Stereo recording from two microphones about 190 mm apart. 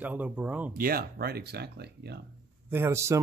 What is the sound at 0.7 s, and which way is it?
Speech, 50° right (ahead or behind).